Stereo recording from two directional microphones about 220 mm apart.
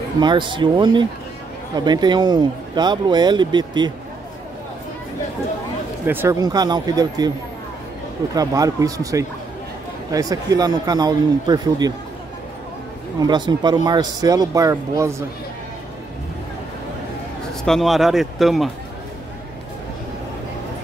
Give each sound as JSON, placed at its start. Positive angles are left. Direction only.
{"t": 0.2, "sound": "speech", "side_deg": -20}
{"t": 6.0, "sound": "speech", "side_deg": -10}
{"t": 8.4, "sound": "speech", "side_deg": -15}
{"t": 13.3, "sound": "speech", "side_deg": -20}
{"t": 17.6, "sound": "speech", "side_deg": 0}